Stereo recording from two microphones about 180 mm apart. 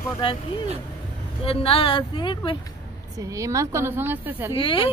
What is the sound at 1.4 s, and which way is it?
Speech, 30° left (ahead or behind).